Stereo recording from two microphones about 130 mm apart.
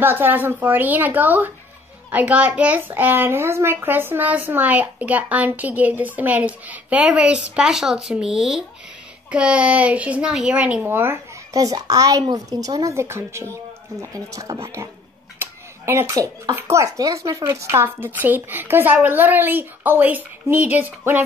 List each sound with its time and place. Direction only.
0.0 s a child's voice: 15° right (ahead or behind)
15.3 s finger snapping: 20° right (ahead or behind)
16.5 s a child's voice: 20° right (ahead or behind)